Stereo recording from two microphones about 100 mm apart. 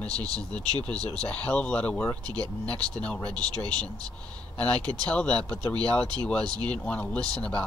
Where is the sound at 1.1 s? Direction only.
10° left (ahead or behind).